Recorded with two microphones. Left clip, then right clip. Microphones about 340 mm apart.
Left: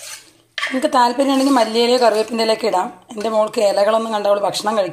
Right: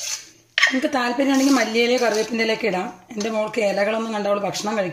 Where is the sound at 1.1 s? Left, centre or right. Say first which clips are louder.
Left 3 dB; left.